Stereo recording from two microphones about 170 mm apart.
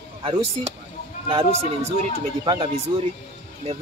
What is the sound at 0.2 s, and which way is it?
Speech, 30° right (ahead or behind).